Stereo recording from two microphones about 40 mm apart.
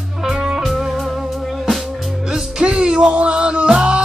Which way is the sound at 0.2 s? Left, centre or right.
Centre.